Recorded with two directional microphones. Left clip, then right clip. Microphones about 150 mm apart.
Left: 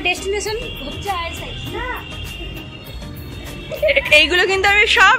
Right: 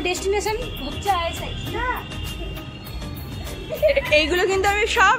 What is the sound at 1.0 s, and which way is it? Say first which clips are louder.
Speech: right 2 dB; 10° right (ahead or behind).